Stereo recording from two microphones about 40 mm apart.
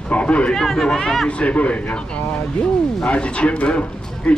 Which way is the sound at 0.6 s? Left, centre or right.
Centre.